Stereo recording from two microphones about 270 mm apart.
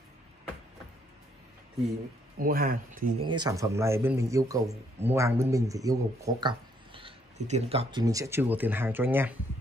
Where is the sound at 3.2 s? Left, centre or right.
Centre.